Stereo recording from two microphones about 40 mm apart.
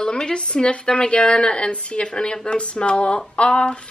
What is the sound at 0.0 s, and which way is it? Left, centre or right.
Speech, centre.